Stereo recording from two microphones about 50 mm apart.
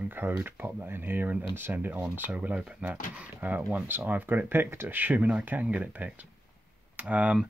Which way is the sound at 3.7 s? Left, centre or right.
Right.